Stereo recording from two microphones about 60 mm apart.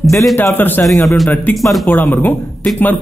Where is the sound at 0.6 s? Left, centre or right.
Left.